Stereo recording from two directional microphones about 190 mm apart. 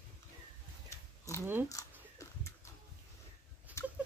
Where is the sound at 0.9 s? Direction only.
15° left (ahead or behind).